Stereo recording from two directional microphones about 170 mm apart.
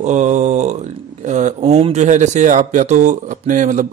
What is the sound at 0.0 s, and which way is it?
Speech, 45° right (ahead or behind).